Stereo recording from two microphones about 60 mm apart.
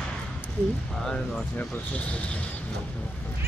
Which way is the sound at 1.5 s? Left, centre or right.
Left.